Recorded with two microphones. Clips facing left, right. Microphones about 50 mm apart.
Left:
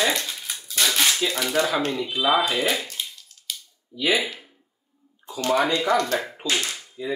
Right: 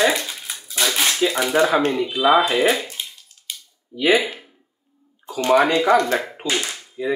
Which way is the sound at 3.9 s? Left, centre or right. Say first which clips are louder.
Right 5 dB; right.